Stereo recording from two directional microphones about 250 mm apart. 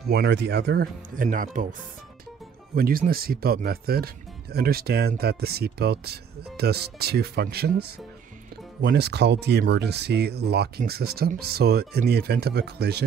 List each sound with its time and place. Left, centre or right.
0.1 s speech: right
2.7 s speech: right